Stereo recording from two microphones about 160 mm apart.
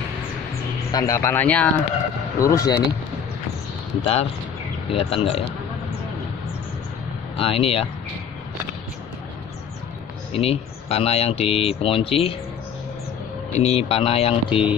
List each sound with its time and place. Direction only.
0.9 s speech: 20° left (ahead or behind)
2.4 s speech: 20° left (ahead or behind)
4.0 s speech: 40° left (ahead or behind)
7.3 s speech: 35° left (ahead or behind)
10.3 s speech: 40° left (ahead or behind)
13.6 s speech: 40° left (ahead or behind)